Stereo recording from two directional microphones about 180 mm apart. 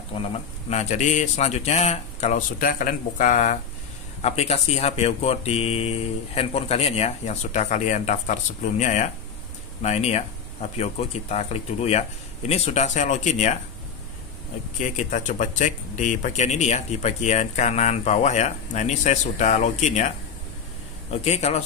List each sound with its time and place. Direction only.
0.2 s speech: 35° left (ahead or behind)
14.8 s speech: 45° left (ahead or behind)
21.1 s speech: 35° left (ahead or behind)